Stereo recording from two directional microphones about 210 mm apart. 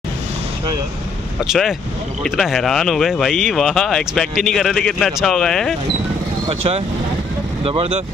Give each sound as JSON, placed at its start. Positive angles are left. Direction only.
{"t": 1.4, "sound": "speech", "side_deg": 0}
{"t": 6.5, "sound": "speech", "side_deg": -30}